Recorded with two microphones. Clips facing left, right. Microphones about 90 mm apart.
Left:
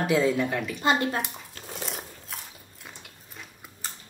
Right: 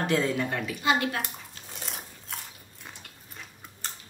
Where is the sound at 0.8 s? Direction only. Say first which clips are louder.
Left 1 dB; 35° left (ahead or behind).